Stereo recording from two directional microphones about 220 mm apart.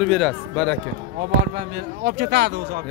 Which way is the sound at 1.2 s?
45° right (ahead or behind).